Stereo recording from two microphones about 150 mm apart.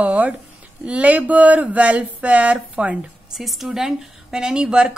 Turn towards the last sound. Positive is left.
turn(degrees=-5)  # may be behind; listen again after turning